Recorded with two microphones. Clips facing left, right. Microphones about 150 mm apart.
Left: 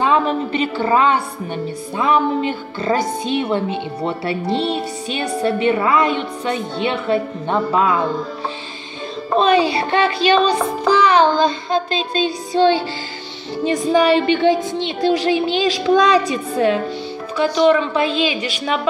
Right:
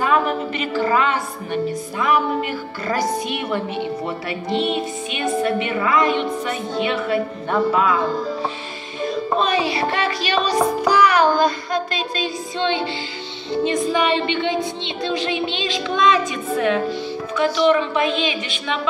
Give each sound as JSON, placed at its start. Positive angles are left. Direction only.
{"t": 0.0, "sound": "a woman's voice", "side_deg": 30}
{"t": 9.0, "sound": "music", "side_deg": 30}
{"t": 9.9, "sound": "a woman's voice", "side_deg": 30}